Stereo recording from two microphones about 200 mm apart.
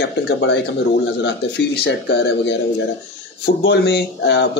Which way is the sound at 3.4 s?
60° left (ahead or behind).